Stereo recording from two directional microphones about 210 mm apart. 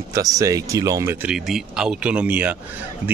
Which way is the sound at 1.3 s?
Centre (ahead or behind).